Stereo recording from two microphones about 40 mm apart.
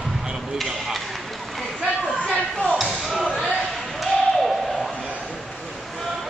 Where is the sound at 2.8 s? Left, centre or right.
Centre.